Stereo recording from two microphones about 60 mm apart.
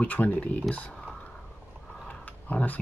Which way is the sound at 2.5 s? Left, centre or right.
Left.